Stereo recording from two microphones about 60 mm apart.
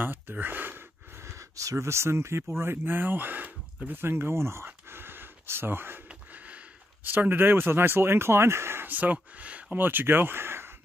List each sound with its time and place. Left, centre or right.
0.0 s speech: right
1.2 s speech: right
4.0 s speech: right
4.6 s a sound: right
6.0 s a sound: right
7.1 s speech: right
8.8 s speech: right